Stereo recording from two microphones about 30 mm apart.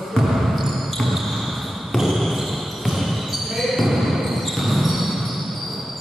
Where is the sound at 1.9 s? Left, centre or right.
Centre.